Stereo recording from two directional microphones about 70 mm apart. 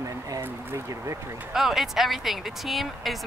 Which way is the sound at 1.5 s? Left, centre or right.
Centre.